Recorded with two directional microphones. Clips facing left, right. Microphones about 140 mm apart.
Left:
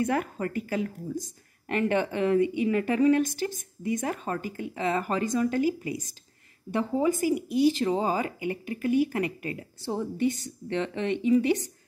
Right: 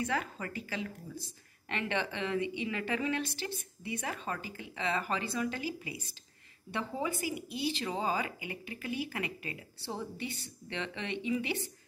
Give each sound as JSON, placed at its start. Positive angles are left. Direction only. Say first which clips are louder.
{"t": 0.0, "sound": "a woman's voice", "louder": "left 8 dB", "side_deg": 50}